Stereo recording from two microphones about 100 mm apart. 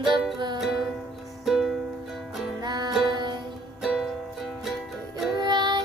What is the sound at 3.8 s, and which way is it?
Music, 5° right (ahead or behind).